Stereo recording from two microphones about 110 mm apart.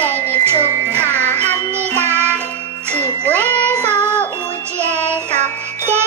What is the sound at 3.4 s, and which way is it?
Child singing, 15° left (ahead or behind).